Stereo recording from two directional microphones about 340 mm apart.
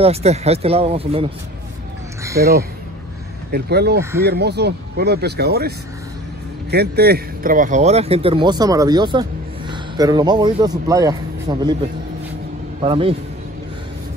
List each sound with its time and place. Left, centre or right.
0.0 s speech: centre
2.4 s speech: right
3.5 s a man's voice: right; by 11.7 s centre
12.8 s speech: centre